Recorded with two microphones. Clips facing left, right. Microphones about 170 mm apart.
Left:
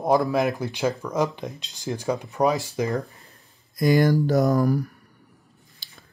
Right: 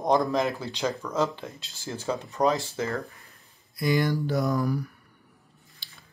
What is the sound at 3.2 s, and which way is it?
Speech, 45° left (ahead or behind).